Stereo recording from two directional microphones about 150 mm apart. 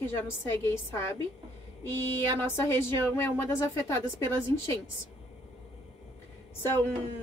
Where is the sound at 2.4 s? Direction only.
15° left (ahead or behind).